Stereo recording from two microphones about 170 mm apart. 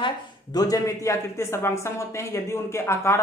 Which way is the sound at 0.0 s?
25° left (ahead or behind).